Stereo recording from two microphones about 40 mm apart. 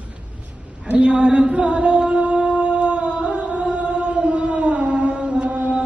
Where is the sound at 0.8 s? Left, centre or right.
Right.